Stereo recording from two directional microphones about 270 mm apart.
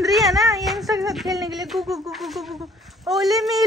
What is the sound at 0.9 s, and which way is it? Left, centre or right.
Speech, centre.